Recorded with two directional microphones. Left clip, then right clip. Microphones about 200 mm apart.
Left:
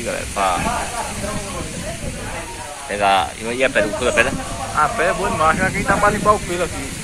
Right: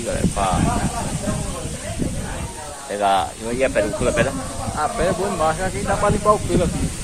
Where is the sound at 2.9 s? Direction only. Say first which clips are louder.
Left 2 dB; 10° left (ahead or behind).